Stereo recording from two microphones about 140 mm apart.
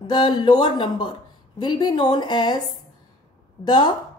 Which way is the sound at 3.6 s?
30° left (ahead or behind).